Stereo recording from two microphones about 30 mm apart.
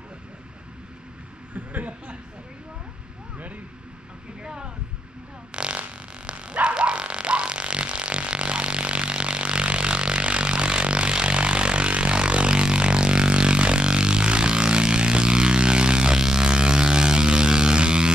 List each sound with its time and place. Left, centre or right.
1.5 s speech: right
4.4 s a sound: right
5.5 s dog: right
10.5 s music: right